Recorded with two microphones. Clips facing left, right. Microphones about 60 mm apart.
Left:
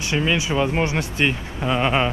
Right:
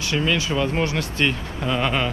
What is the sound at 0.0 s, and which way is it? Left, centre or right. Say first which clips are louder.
Speech: left 1 dB; centre.